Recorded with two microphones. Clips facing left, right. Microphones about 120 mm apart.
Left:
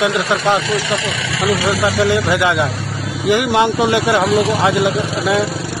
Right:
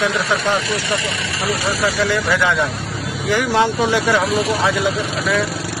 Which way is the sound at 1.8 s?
15° left (ahead or behind).